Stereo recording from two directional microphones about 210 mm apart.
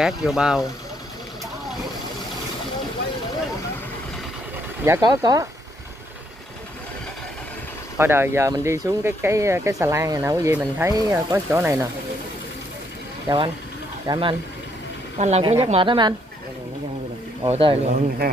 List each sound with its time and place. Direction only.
0.0 s speech: centre (ahead or behind)
4.8 s speech: 15° right (ahead or behind)
8.0 s speech: 10° right (ahead or behind)
13.3 s a woman's voice: 20° right (ahead or behind)
15.1 s a woman's voice: 30° right (ahead or behind)
17.5 s a woman's voice: 25° right (ahead or behind)